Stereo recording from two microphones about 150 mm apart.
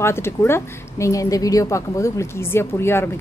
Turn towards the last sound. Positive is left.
turn(degrees=15)  # may be behind; listen again after turning